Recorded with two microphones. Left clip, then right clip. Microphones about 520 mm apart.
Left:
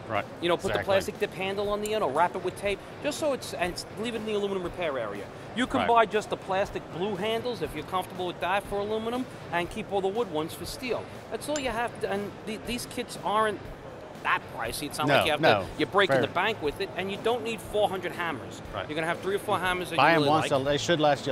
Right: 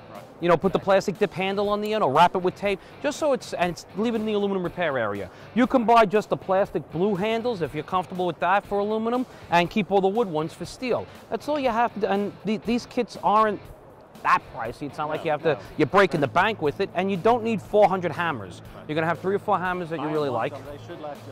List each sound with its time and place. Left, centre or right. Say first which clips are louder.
0.4 s speech: right 8 dB; right
5.6 s speech: right 5 dB; right
20.7 s speech: left 13 dB; left